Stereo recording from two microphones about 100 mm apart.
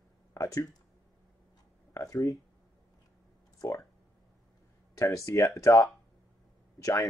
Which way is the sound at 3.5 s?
35° left (ahead or behind).